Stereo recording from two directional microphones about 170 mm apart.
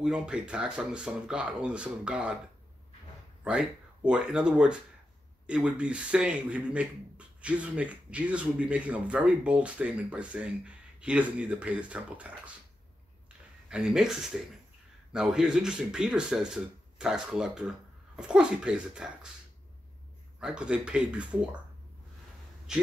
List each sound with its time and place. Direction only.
0.0 s speech: 5° right (ahead or behind)
3.4 s speech: 5° right (ahead or behind)
13.7 s speech: centre (ahead or behind)
20.3 s speech: 5° right (ahead or behind)
22.7 s speech: 5° right (ahead or behind)